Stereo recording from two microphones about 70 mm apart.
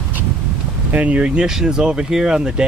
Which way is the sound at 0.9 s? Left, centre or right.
Centre.